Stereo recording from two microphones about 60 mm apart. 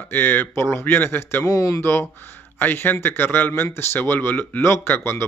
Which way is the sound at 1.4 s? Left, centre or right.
Left.